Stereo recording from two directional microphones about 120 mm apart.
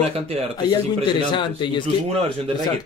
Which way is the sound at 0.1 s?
55° right (ahead or behind).